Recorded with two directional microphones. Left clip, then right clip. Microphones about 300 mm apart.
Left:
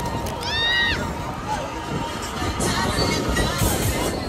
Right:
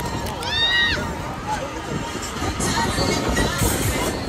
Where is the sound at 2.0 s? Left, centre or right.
Left.